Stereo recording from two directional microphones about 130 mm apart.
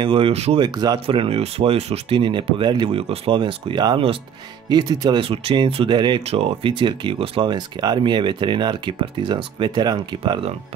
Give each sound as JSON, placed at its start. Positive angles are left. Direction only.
{"t": 0.0, "sound": "speech", "side_deg": -45}
{"t": 0.6, "sound": "speech", "side_deg": -35}
{"t": 1.0, "sound": "speech", "side_deg": -45}
{"t": 6.2, "sound": "speech", "side_deg": -50}